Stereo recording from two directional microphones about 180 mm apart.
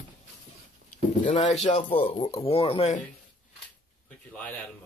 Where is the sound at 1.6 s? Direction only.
40° left (ahead or behind).